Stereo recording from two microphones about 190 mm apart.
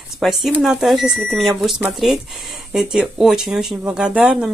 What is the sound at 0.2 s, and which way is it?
Speech, centre (ahead or behind).